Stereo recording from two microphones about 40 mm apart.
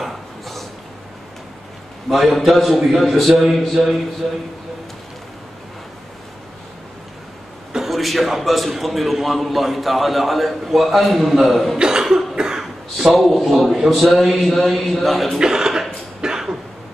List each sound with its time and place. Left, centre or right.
0.0 s a sound: centre
2.0 s a man's voice: centre
7.7 s a man's voice: centre
11.8 s cough: centre
13.1 s a man's voice: centre
15.3 s cough: centre